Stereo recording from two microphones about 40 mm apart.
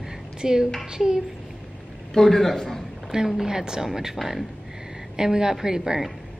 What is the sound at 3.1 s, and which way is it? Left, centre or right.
A woman's voice, centre.